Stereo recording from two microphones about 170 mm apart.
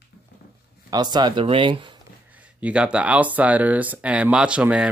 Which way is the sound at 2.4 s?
10° right (ahead or behind).